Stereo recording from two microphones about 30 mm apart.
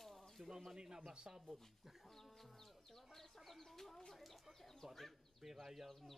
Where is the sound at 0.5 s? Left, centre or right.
Right.